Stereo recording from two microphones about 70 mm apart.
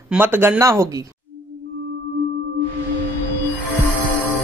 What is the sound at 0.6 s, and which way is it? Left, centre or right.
Speech, right.